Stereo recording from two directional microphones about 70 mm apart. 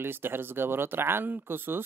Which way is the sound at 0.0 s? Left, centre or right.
Right.